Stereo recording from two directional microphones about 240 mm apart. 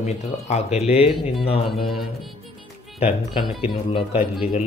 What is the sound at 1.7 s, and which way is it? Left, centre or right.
Speech, centre.